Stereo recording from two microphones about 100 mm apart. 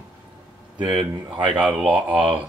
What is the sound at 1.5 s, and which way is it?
Speech, 10° right (ahead or behind).